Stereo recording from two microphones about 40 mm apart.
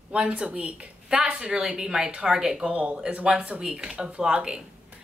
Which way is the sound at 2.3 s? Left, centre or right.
Centre.